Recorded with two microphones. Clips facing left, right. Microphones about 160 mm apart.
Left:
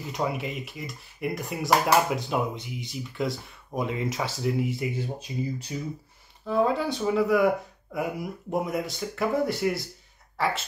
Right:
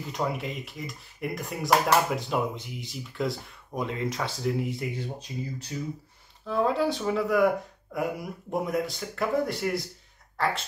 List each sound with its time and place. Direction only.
0.1 s speech: 5° left (ahead or behind)
5.7 s speech: 15° left (ahead or behind)
6.4 s speech: 5° left (ahead or behind)